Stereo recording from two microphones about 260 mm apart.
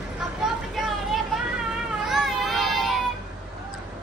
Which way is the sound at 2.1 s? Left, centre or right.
Centre.